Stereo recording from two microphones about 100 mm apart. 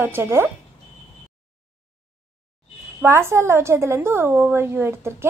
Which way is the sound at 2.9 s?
25° right (ahead or behind).